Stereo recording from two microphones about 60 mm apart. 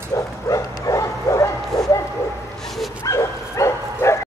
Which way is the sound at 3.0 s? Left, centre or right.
Left.